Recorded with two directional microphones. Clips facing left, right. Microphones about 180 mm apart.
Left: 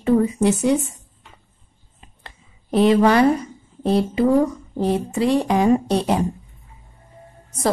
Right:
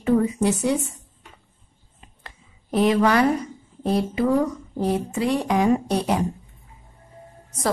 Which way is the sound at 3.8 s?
25° left (ahead or behind).